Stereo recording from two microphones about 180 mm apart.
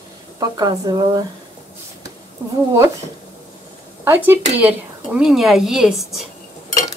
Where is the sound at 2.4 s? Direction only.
15° right (ahead or behind).